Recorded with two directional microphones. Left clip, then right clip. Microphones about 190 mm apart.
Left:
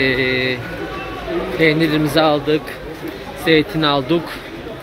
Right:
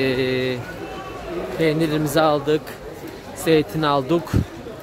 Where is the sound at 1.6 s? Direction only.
20° right (ahead or behind).